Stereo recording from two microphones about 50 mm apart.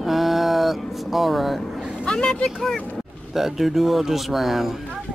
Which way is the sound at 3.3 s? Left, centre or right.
Centre.